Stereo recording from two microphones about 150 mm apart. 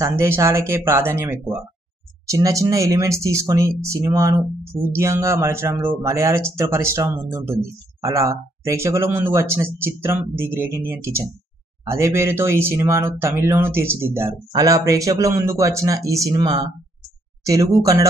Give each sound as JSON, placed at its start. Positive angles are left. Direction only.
{"t": 0.0, "sound": "speech", "side_deg": -20}